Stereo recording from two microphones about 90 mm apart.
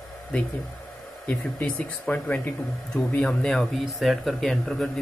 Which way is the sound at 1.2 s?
15° left (ahead or behind).